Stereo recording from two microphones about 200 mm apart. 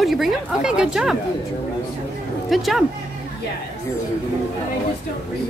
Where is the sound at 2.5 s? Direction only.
Centre (ahead or behind).